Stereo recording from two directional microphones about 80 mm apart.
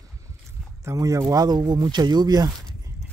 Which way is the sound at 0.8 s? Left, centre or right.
Right.